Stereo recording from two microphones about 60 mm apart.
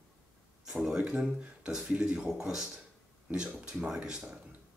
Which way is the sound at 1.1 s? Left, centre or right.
Centre.